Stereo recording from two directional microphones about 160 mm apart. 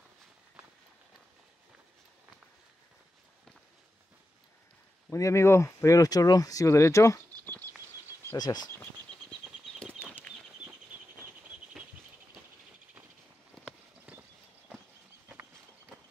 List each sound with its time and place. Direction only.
5.1 s speech: 20° left (ahead or behind)
7.4 s patter: 15° left (ahead or behind)
8.3 s speech: 25° left (ahead or behind)
10.0 s bird flight: 15° left (ahead or behind)